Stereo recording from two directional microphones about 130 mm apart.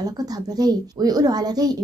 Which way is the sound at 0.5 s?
30° right (ahead or behind).